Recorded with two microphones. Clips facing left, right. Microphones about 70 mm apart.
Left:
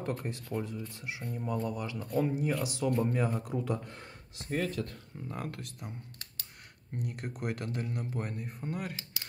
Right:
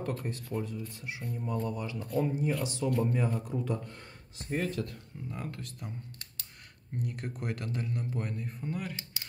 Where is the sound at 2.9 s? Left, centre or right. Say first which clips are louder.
Even; left.